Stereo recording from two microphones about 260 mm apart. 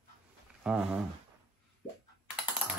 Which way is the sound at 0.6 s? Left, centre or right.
Centre.